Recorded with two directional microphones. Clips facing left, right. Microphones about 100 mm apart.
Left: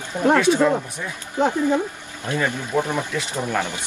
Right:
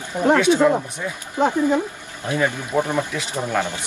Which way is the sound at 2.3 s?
15° right (ahead or behind).